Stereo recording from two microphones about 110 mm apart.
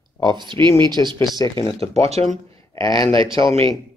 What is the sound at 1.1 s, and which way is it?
Speech, 30° left (ahead or behind).